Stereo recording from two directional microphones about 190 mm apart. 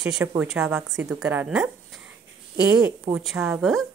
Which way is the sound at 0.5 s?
Centre (ahead or behind).